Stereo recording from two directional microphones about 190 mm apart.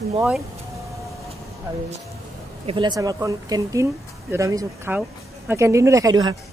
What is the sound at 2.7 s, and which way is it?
Speech, 25° right (ahead or behind).